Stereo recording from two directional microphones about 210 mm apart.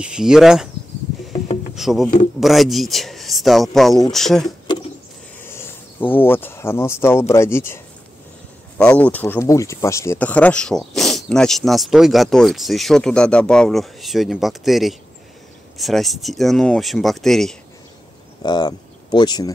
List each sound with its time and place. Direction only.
0.0 s speech: 5° right (ahead or behind)
1.8 s speech: centre (ahead or behind)
4.7 s rodents: 20° left (ahead or behind)
5.4 s speech: 10° left (ahead or behind)
18.4 s speech: 20° left (ahead or behind)